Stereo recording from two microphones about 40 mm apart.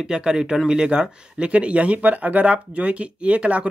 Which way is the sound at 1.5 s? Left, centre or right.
Right.